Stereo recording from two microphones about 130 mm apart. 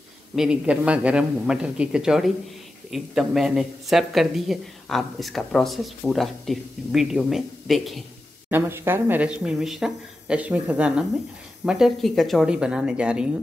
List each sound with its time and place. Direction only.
0.4 s speech: 10° right (ahead or behind)
8.5 s speech: 15° right (ahead or behind)